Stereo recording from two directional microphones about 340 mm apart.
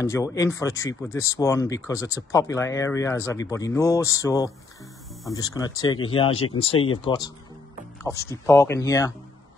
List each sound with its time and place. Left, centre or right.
0.0 s speech: centre